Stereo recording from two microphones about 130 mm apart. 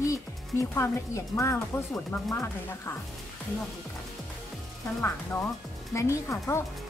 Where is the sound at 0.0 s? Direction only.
25° left (ahead or behind).